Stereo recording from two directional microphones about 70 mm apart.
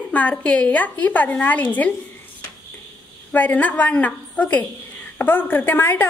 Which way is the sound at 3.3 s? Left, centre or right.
Left.